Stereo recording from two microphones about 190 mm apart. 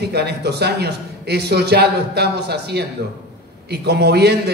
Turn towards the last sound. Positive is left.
turn(degrees=-60)  # may be behind; listen again after turning